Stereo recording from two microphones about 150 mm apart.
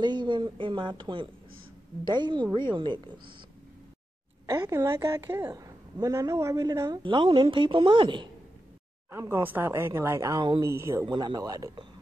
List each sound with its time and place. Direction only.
0.0 s a woman's voice: 30° right (ahead or behind)
4.5 s a woman's voice: 20° right (ahead or behind)
7.0 s a woman's voice: 35° right (ahead or behind)
9.1 s a woman's voice: 15° right (ahead or behind)
11.1 s a woman's voice: 30° right (ahead or behind)